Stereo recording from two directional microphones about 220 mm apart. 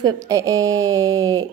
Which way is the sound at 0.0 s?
15° right (ahead or behind).